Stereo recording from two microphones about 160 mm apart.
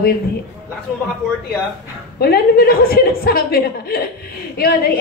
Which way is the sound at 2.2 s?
70° left (ahead or behind).